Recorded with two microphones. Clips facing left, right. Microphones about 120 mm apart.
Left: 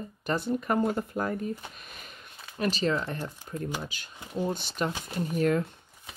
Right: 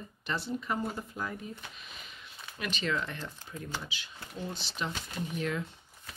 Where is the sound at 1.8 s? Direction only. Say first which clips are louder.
Left 2 dB; 50° left (ahead or behind).